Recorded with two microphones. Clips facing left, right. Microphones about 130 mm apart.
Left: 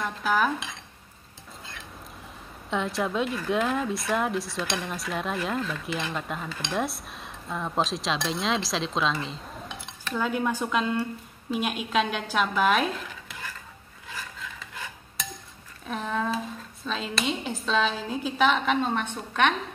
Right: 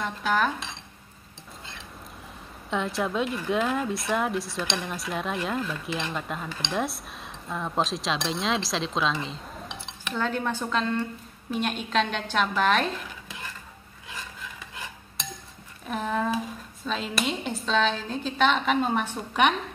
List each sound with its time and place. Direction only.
0.0 s speech: 5° left (ahead or behind)
2.7 s speech: centre (ahead or behind)
9.7 s cutlery: 20° right (ahead or behind)
10.1 s a woman's voice: 10° left (ahead or behind)
15.9 s speech: 5° right (ahead or behind)